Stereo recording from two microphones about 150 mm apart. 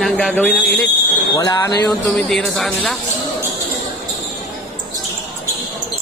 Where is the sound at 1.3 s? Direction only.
25° left (ahead or behind).